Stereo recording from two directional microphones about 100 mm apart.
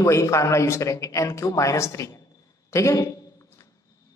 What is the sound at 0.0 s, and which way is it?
A man's voice, 30° left (ahead or behind).